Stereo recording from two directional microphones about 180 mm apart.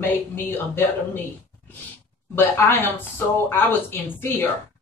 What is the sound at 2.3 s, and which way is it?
Speech, 10° left (ahead or behind).